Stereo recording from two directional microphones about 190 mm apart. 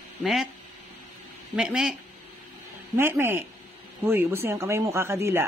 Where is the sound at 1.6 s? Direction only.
5° right (ahead or behind).